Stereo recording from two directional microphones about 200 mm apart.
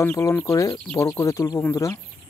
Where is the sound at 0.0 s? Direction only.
10° left (ahead or behind).